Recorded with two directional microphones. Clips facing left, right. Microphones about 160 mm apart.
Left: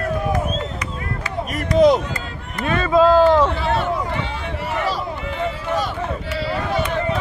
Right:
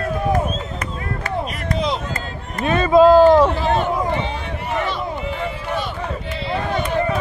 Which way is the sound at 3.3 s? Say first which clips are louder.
Right 3 dB; 15° right (ahead or behind).